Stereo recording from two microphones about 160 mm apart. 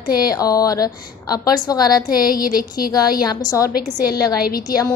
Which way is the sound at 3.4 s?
20° left (ahead or behind).